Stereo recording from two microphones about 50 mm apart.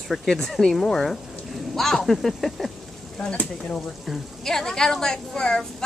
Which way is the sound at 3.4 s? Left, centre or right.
Left.